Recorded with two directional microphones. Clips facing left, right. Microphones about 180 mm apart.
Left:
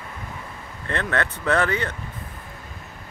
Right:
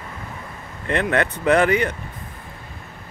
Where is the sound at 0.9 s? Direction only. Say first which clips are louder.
Right 5 dB; 15° right (ahead or behind).